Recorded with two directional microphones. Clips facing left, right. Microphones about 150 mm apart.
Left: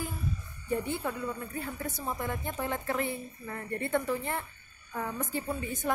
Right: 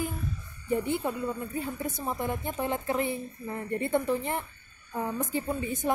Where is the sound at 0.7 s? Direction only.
20° right (ahead or behind).